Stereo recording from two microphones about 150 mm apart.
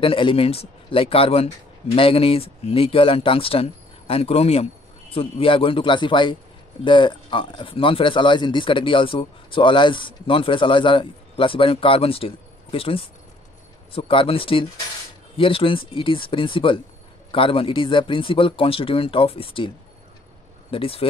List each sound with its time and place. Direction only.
0.0 s speech: 35° left (ahead or behind)
20.7 s speech: 35° left (ahead or behind)